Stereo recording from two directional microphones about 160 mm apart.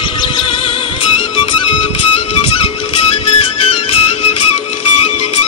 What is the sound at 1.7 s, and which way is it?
Music, 35° left (ahead or behind).